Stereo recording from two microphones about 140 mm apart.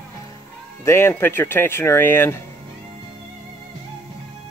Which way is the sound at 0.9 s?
15° left (ahead or behind).